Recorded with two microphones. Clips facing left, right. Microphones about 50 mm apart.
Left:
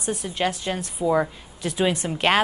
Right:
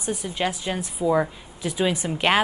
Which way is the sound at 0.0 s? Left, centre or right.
Centre.